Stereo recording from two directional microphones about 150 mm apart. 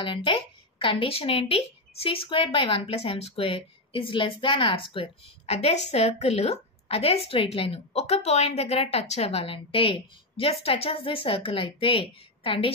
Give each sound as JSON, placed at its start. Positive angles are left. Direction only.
{"t": 0.0, "sound": "a woman's voice", "side_deg": 35}